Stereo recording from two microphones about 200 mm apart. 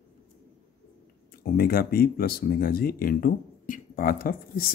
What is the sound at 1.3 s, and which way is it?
Speech, 50° left (ahead or behind).